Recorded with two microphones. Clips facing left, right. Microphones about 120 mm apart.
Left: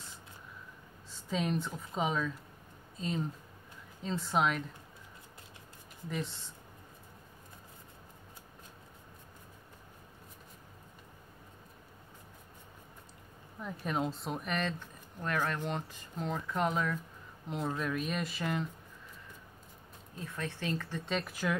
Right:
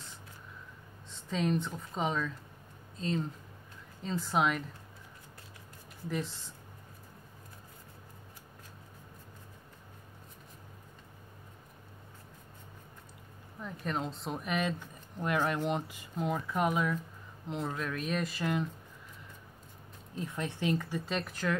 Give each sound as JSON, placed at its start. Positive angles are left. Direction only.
{"t": 1.1, "sound": "speech", "side_deg": 0}
{"t": 6.0, "sound": "speech", "side_deg": 0}
{"t": 13.6, "sound": "speech", "side_deg": 5}
{"t": 20.2, "sound": "speech", "side_deg": -15}
{"t": 21.0, "sound": "speech", "side_deg": 0}